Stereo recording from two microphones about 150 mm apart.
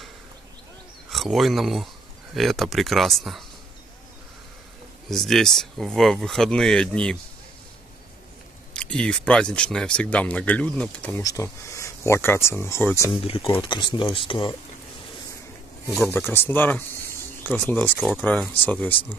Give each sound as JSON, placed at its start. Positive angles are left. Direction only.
{"t": 1.1, "sound": "speech", "side_deg": 0}
{"t": 5.1, "sound": "speech", "side_deg": 0}
{"t": 8.7, "sound": "speech", "side_deg": 5}
{"t": 11.2, "sound": "speech", "side_deg": 20}
{"t": 13.1, "sound": "speech", "side_deg": 40}
{"t": 16.0, "sound": "speech", "side_deg": 15}